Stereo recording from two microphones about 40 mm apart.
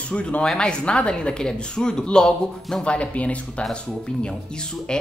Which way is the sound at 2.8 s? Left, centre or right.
Left.